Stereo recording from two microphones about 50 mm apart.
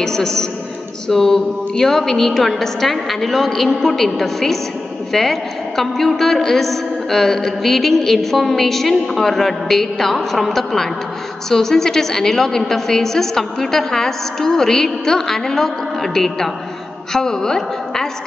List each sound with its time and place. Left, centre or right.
0.0 s a woman's voice: centre